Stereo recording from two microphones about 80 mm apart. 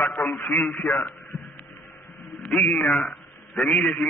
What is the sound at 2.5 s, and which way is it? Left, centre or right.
Speech, centre.